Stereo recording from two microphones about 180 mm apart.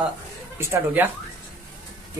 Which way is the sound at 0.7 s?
10° right (ahead or behind).